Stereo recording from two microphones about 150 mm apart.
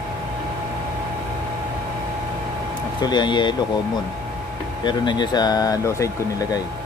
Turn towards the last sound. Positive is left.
turn(degrees=20)  # may be behind; listen again after turning